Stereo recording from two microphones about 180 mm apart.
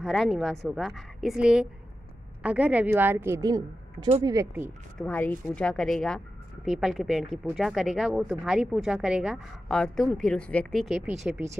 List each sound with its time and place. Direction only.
0.0 s a woman's voice: centre (ahead or behind); by 4.6 s 20° right (ahead or behind)
4.9 s a woman's voice: 10° left (ahead or behind)